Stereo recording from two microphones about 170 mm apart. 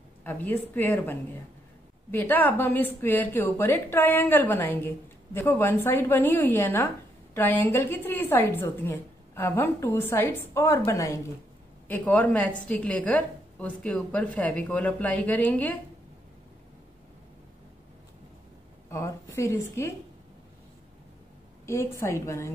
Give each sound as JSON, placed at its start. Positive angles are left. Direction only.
{"t": 0.2, "sound": "a woman's voice", "side_deg": 10}
{"t": 18.9, "sound": "a woman's voice", "side_deg": 15}
{"t": 21.6, "sound": "a woman's voice", "side_deg": 15}